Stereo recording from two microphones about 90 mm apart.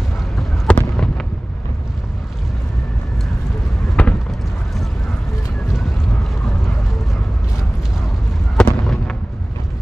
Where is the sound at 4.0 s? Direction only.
20° left (ahead or behind).